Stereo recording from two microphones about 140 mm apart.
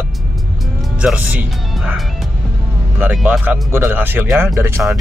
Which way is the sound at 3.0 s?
10° right (ahead or behind).